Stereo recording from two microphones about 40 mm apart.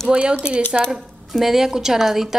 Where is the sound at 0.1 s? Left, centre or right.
Right.